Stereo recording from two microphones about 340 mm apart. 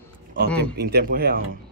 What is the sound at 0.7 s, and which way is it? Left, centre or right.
Speech, right.